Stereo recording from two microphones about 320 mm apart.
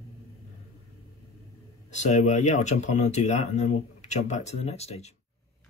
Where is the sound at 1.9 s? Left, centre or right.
Left.